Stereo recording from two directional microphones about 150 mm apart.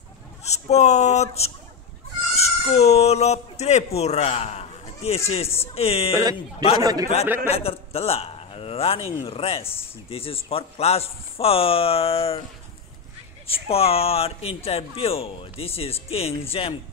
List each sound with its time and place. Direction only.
0.4 s speech: 45° left (ahead or behind)
6.8 s speech: 25° right (ahead or behind)
7.4 s a man's voice: 40° left (ahead or behind)
13.5 s speech: 40° left (ahead or behind)